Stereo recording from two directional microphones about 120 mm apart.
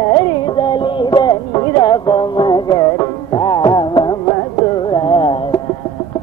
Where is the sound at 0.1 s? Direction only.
40° left (ahead or behind).